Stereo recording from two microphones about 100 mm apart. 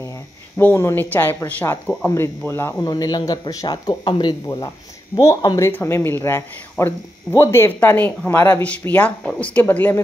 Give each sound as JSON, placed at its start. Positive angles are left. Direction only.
{"t": 0.6, "sound": "speech", "side_deg": 25}
{"t": 2.8, "sound": "speech", "side_deg": 40}
{"t": 5.7, "sound": "speech", "side_deg": 25}